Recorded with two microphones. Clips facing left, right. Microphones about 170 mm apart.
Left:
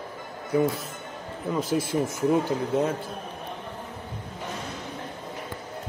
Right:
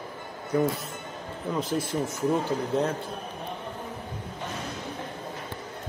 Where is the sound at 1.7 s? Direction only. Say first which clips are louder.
Left 3 dB; 10° left (ahead or behind).